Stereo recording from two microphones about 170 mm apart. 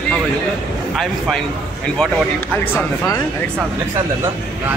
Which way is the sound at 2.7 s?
20° left (ahead or behind).